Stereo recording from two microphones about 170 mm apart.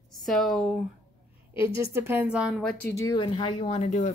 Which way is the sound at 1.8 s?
15° right (ahead or behind).